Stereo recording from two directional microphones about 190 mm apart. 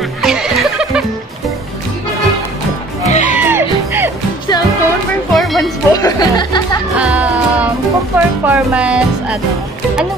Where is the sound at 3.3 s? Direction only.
10° right (ahead or behind).